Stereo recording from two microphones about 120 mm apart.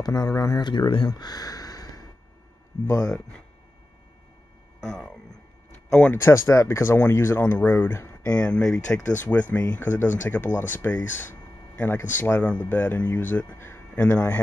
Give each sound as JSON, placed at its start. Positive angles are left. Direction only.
{"t": 0.0, "sound": "speech", "side_deg": 30}
{"t": 3.1, "sound": "speech", "side_deg": 5}
{"t": 4.8, "sound": "speech", "side_deg": 5}